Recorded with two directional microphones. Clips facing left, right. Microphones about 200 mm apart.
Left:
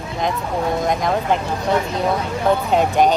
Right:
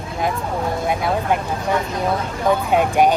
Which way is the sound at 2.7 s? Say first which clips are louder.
Right 1 dB; 10° right (ahead or behind).